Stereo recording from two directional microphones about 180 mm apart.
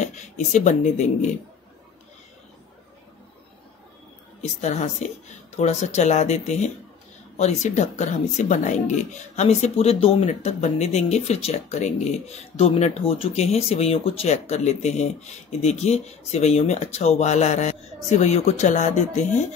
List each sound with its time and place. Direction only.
0.0 s speech: 40° left (ahead or behind)
4.4 s speech: 40° left (ahead or behind)